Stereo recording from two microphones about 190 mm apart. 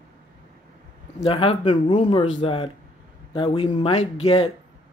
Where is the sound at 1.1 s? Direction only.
30° left (ahead or behind).